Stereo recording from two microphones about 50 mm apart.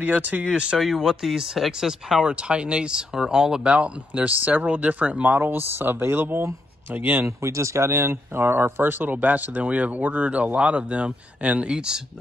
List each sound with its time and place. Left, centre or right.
0.0 s speech: right
0.7 s speech: centre
2.2 s speech: right
7.2 s speech: right; by 12.0 s centre